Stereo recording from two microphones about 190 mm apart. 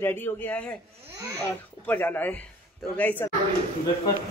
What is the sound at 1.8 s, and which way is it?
A woman's voice, 10° left (ahead or behind).